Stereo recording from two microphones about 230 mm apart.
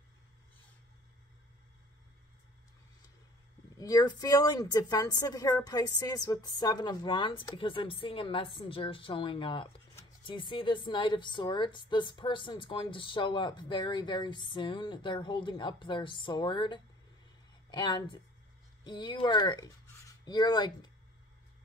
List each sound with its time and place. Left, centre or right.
3.7 s a woman's voice: centre